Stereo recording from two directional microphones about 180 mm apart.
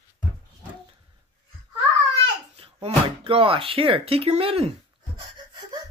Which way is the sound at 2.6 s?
30° right (ahead or behind).